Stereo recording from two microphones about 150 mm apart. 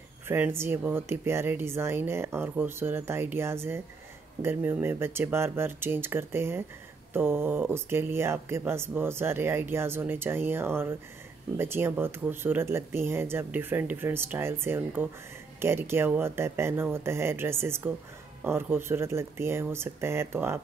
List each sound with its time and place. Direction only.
0.3 s speech: 15° right (ahead or behind)